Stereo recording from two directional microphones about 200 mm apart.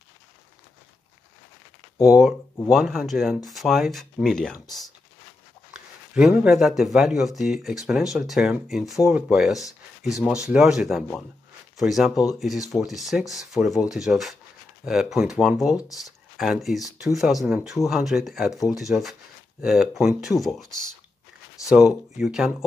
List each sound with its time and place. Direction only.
2.0 s speech: centre (ahead or behind)
6.1 s speech: 5° right (ahead or behind)
9.7 s speech: 15° left (ahead or behind)
10.4 s speech: 5° right (ahead or behind)